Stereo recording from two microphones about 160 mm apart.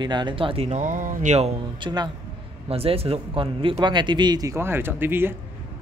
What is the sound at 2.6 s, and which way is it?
A woman's voice, 35° right (ahead or behind).